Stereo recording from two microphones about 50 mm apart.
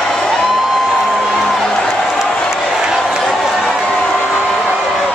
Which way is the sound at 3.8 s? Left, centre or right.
Left.